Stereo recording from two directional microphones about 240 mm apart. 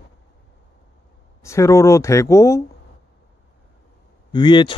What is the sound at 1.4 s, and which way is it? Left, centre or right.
Speech, centre.